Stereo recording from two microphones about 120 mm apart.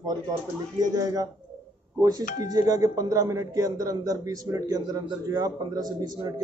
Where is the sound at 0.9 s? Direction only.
30° right (ahead or behind).